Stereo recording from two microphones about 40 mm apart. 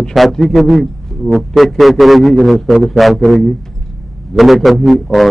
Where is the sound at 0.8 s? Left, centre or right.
Centre.